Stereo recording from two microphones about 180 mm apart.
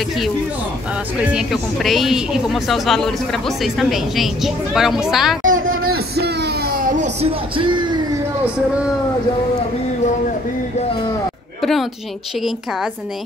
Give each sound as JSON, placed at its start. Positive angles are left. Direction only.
{"t": 1.2, "sound": "speech", "side_deg": -5}
{"t": 5.5, "sound": "a sound", "side_deg": -90}
{"t": 5.8, "sound": "music", "side_deg": -60}
{"t": 11.6, "sound": "speech", "side_deg": 0}